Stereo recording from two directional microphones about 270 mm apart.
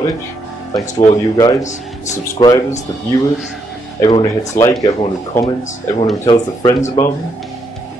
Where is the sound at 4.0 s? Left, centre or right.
Centre.